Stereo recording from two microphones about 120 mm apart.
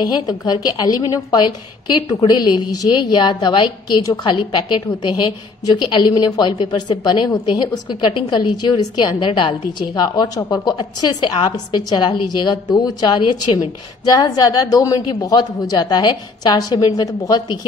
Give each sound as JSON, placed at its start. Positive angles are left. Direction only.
{"t": 0.0, "sound": "a woman's voice", "side_deg": 35}